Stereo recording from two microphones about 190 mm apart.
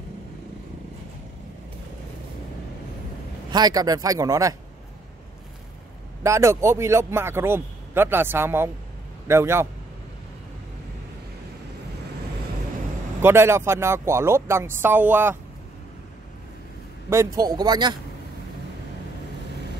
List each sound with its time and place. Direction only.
3.5 s speech: 20° right (ahead or behind)
6.2 s speech: 15° right (ahead or behind)
13.2 s speech: 15° right (ahead or behind)
17.1 s a man's voice: 15° right (ahead or behind)